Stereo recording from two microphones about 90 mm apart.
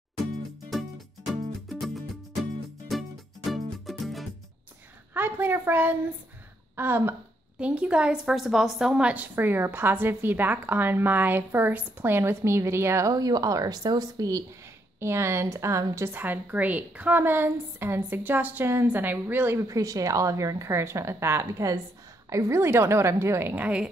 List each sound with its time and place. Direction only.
0.7 s music: centre (ahead or behind)
5.1 s a woman's voice: 25° right (ahead or behind)
7.5 s a woman's voice: 15° right (ahead or behind); by 14.4 s 45° right (ahead or behind)
15.0 s a woman's voice: 30° right (ahead or behind)
19.7 s a woman's voice: 40° right (ahead or behind)
23.5 s speech: 15° right (ahead or behind)